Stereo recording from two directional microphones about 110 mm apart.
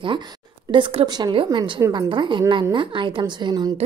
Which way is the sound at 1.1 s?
40° right (ahead or behind).